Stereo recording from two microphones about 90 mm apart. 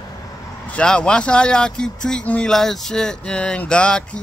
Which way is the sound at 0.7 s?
10° left (ahead or behind).